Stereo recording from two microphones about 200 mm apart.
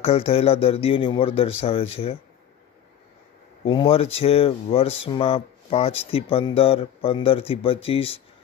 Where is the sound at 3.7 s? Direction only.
30° left (ahead or behind).